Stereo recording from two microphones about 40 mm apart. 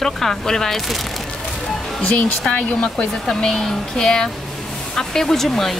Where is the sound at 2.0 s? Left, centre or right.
Left.